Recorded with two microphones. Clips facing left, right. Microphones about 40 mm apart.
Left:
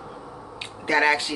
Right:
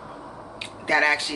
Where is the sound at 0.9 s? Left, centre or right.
Centre.